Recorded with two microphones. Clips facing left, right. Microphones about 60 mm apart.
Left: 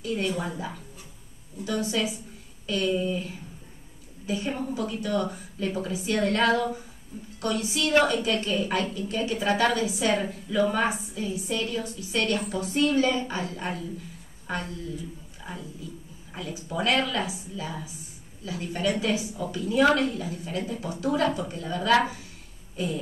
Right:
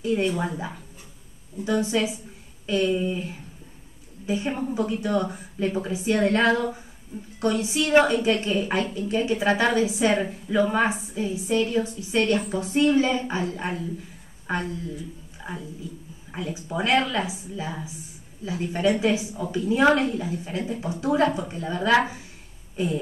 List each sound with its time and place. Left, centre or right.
0.0 s a woman's voice: right
15.5 s a woman's voice: right